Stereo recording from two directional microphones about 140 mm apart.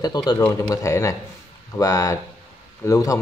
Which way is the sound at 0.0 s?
30° left (ahead or behind).